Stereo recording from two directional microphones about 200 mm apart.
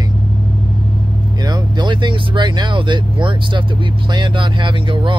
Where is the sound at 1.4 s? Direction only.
20° right (ahead or behind).